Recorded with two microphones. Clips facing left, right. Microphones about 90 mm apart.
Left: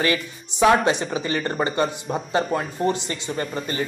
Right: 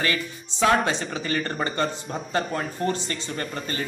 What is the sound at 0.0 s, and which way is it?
Speech, 20° left (ahead or behind).